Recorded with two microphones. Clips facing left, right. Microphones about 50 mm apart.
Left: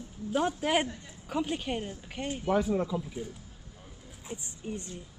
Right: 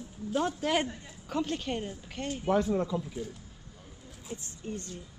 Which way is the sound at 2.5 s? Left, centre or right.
Centre.